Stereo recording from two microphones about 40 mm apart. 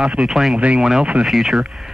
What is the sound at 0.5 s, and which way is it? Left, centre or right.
Speech, right.